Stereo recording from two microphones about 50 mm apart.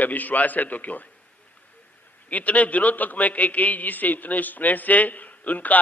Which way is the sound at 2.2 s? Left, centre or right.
Left.